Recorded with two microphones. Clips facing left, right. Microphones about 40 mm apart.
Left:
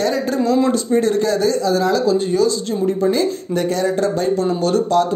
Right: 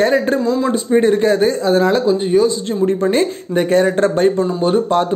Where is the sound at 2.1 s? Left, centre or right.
Right.